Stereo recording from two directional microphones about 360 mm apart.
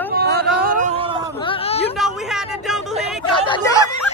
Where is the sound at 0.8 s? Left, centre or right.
Centre.